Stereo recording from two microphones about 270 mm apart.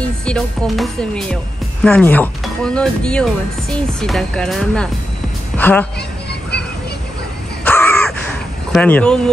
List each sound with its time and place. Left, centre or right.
0.2 s a woman's voice: centre
7.6 s crow: centre
8.7 s speech: centre